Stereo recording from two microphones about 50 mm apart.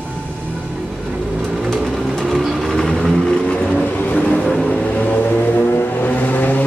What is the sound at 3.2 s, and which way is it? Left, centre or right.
Vehicle, centre.